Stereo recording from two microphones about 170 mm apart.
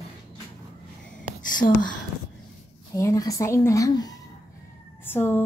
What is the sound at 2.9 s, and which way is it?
A woman's voice, 20° left (ahead or behind).